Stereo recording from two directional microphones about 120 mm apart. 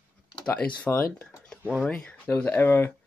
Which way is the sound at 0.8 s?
15° left (ahead or behind).